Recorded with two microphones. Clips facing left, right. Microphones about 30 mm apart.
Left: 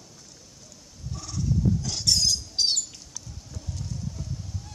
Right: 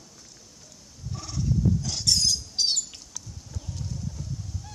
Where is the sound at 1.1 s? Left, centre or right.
Centre.